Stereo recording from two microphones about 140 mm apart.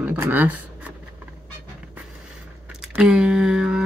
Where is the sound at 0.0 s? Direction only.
15° right (ahead or behind).